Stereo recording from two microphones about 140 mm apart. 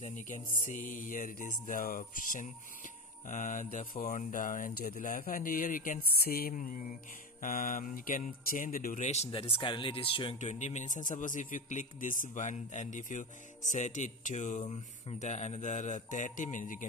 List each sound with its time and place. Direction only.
0.0 s a man's voice: 65° left (ahead or behind)
0.7 s music: 70° left (ahead or behind); by 10.3 s 40° left (ahead or behind)
10.4 s a man's voice: 55° left (ahead or behind)